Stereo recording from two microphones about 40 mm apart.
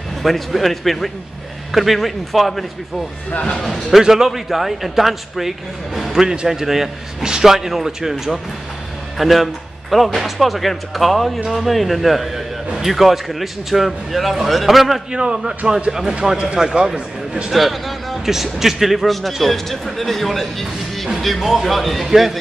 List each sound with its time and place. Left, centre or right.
0.2 s a man's voice: centre
3.6 s a man's voice: centre
15.1 s a man's voice: centre
15.9 s speech: centre
16.9 s speech: right
17.5 s a man's voice: centre